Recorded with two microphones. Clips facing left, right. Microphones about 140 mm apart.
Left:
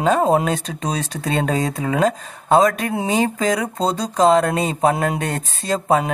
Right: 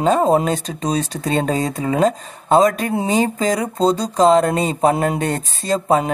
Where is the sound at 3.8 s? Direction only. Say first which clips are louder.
Right 3 dB; centre (ahead or behind).